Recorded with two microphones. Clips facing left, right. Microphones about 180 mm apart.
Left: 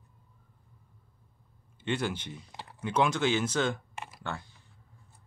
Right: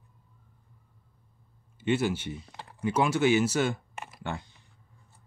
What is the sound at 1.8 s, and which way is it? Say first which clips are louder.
Speech: right 5 dB; 5° right (ahead or behind).